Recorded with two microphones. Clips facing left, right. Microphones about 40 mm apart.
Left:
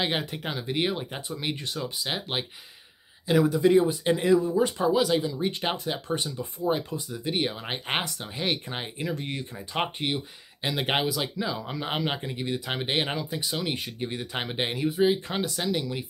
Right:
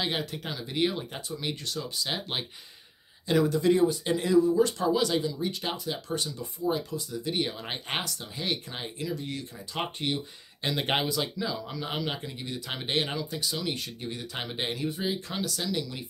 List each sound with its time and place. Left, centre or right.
0.0 s speech: left
2.1 s speech: centre
5.4 s speech: left
9.9 s speech: centre
15.0 s speech: left